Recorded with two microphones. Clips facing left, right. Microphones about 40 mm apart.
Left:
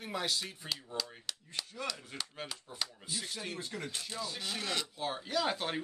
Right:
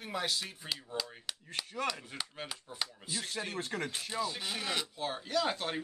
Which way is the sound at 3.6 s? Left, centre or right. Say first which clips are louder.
Right 4 dB; right.